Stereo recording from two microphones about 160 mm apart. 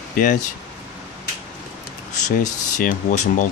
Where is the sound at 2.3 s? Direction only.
50° left (ahead or behind).